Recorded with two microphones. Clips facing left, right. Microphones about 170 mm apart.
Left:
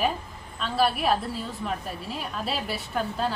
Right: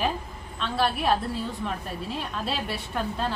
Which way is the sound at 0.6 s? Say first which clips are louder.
Left 2 dB; 5° left (ahead or behind).